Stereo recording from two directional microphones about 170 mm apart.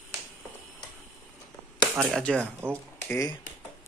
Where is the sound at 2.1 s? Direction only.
5° left (ahead or behind).